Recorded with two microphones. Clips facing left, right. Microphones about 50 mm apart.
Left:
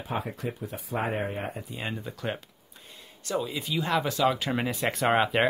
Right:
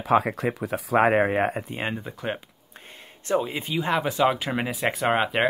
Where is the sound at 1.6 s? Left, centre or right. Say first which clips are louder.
Right 5 dB; right.